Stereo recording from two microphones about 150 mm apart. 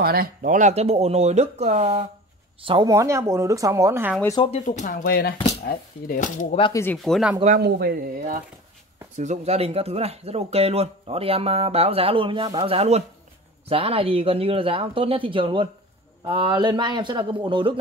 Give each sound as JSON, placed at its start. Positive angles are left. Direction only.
{"t": 0.0, "sound": "speech", "side_deg": -80}
{"t": 2.9, "sound": "speech", "side_deg": -20}
{"t": 4.4, "sound": "speech", "side_deg": 45}
{"t": 5.0, "sound": "speech", "side_deg": 90}
{"t": 6.7, "sound": "speech", "side_deg": 15}
{"t": 7.1, "sound": "speech", "side_deg": 0}
{"t": 7.4, "sound": "speech", "side_deg": -75}
{"t": 9.1, "sound": "speech", "side_deg": -50}